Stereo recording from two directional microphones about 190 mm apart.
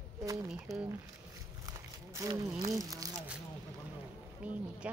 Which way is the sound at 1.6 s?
15° right (ahead or behind).